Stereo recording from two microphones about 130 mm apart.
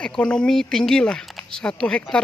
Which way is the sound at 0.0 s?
5° left (ahead or behind).